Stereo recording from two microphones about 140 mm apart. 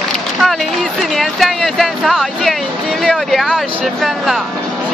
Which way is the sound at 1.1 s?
Centre (ahead or behind).